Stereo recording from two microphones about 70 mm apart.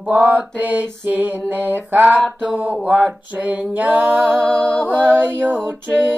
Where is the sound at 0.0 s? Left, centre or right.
Right.